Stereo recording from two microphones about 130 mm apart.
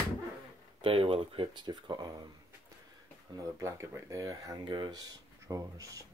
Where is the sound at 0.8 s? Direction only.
45° right (ahead or behind).